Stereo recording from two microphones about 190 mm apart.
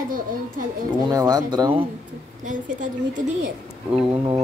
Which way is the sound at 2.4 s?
40° right (ahead or behind).